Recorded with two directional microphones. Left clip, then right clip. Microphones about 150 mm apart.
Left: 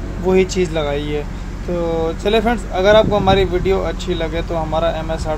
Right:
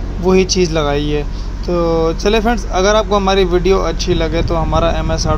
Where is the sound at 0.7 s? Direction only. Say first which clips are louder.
Right 4 dB; 35° right (ahead or behind).